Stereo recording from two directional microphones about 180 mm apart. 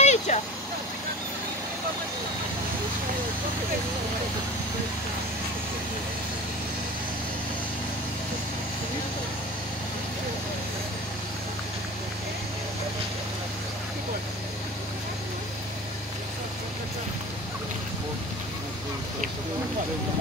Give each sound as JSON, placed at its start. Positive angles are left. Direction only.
{"t": 0.0, "sound": "vehicle", "side_deg": 40}